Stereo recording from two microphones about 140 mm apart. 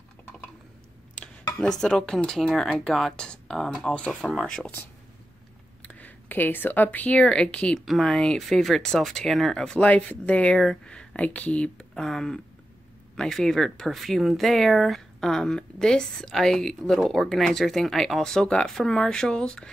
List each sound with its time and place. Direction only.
1.1 s speech: 5° left (ahead or behind)